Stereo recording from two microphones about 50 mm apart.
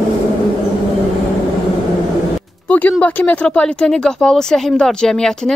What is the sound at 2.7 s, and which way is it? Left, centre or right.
Speech, left.